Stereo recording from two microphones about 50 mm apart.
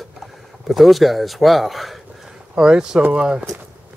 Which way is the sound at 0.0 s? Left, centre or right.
Centre.